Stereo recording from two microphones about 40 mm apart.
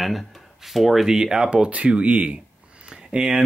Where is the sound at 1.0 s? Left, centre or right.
Centre.